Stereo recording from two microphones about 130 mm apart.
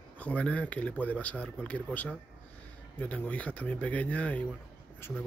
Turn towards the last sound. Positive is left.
turn(degrees=15)  # may be behind; listen again after turning